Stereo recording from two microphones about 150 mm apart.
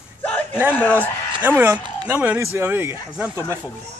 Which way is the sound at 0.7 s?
10° left (ahead or behind).